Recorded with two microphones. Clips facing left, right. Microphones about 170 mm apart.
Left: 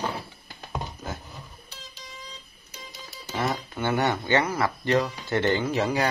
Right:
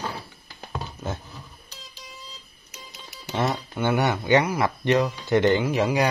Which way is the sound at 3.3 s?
25° right (ahead or behind).